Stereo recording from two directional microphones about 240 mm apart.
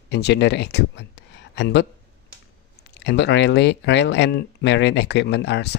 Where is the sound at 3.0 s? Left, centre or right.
Left.